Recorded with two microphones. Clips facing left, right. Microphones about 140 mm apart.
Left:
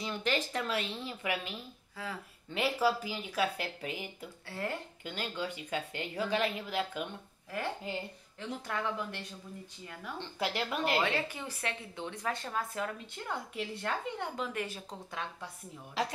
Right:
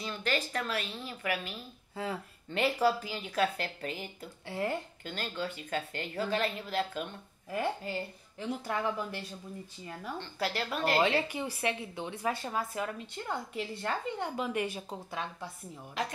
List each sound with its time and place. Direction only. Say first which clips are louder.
0.0 s a woman's voice: even; 20° left (ahead or behind)
2.0 s speech: right 5 dB; 25° right (ahead or behind)
2.5 s a woman's voice: right 2 dB; 5° left (ahead or behind)
4.5 s a woman's voice: right 4 dB; 15° right (ahead or behind)
5.0 s a woman's voice: right 1 dB; 15° left (ahead or behind)
8.4 s a woman's voice: right 3 dB; 10° right (ahead or behind)
10.1 s a woman's voice: even; 15° left (ahead or behind)
11.1 s a woman's voice: right 4 dB; 15° right (ahead or behind)